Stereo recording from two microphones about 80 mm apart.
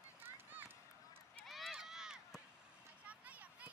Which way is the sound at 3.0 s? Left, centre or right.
Centre.